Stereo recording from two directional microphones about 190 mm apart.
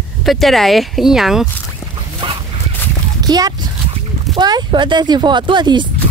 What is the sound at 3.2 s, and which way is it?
Dog, 20° right (ahead or behind).